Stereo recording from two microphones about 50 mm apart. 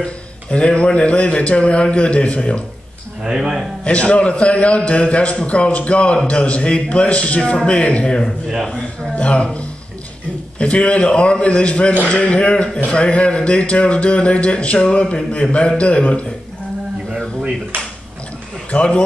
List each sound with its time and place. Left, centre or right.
0.0 s a man's voice: left
3.3 s speech: centre
3.8 s a man's voice: left
18.7 s a man's voice: left